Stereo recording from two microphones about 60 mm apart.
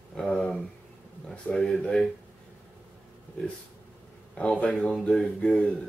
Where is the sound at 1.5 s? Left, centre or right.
Centre.